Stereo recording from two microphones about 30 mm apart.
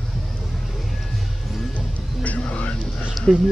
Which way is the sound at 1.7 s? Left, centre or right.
Left.